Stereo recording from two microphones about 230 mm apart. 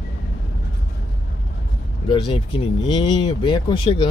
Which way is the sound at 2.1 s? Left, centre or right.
Centre.